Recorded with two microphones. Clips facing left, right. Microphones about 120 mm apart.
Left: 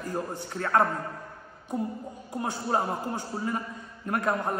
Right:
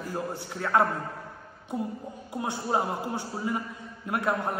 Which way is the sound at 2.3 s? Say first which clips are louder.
Even; 15° right (ahead or behind).